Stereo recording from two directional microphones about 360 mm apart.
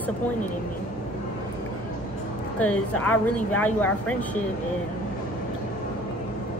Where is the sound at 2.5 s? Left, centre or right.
Centre.